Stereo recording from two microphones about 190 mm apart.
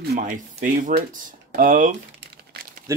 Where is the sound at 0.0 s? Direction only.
55° right (ahead or behind).